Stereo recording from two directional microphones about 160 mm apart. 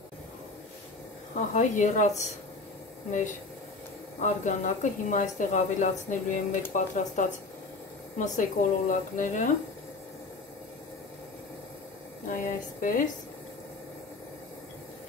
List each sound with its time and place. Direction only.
1.3 s speech: 50° left (ahead or behind)
4.2 s speech: 50° left (ahead or behind)
12.3 s speech: 55° left (ahead or behind)